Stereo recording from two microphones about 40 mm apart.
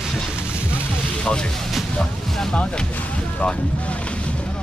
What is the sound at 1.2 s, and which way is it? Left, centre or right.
Speech, left.